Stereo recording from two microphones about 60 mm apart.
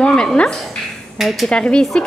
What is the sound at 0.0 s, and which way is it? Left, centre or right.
Speech, centre.